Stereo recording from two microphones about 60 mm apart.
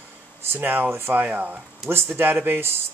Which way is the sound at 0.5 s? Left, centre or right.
Right.